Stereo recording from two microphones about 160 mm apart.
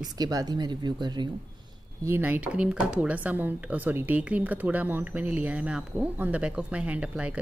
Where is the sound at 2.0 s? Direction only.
15° right (ahead or behind).